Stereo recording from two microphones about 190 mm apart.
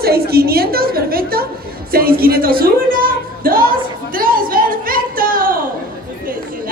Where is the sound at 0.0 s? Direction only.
55° right (ahead or behind).